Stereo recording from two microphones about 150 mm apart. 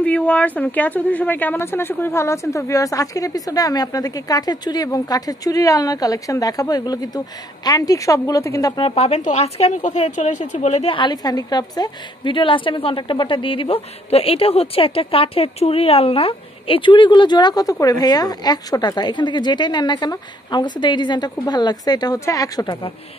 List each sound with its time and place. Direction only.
0.0 s speech: 10° left (ahead or behind)
8.8 s speech: 40° left (ahead or behind)